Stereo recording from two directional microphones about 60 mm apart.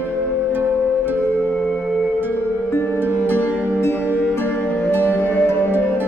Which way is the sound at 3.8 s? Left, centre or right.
Left.